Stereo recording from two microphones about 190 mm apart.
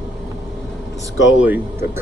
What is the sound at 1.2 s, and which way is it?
Speech, 5° right (ahead or behind).